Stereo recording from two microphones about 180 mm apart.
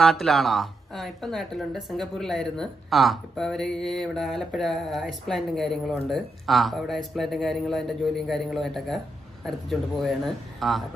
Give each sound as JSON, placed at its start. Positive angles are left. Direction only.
{"t": 0.0, "sound": "a woman's voice", "side_deg": 0}